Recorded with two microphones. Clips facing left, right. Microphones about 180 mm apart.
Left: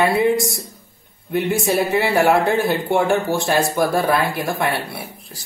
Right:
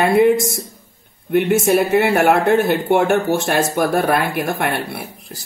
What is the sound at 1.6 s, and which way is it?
Speech, 50° right (ahead or behind).